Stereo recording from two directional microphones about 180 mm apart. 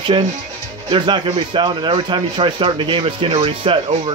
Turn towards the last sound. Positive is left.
turn(degrees=-30)  # may be behind; listen again after turning